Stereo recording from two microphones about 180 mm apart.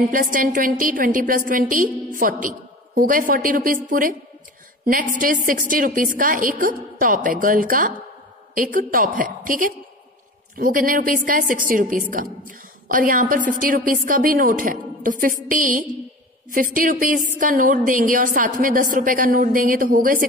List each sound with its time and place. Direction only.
0.1 s a woman's voice: 50° right (ahead or behind)